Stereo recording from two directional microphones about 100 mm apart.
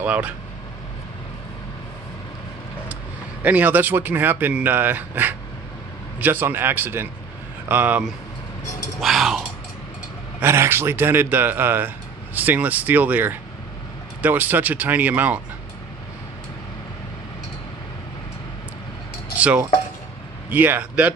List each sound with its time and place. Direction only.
0.0 s speech: 15° right (ahead or behind)
3.4 s speech: 15° right (ahead or behind)
9.0 s speech: centre (ahead or behind)
10.4 s speech: 25° right (ahead or behind)
19.3 s cowbell: 15° right (ahead or behind)
20.4 s speech: 20° right (ahead or behind)